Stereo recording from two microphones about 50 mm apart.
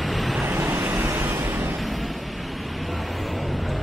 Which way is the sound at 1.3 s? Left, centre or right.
Right.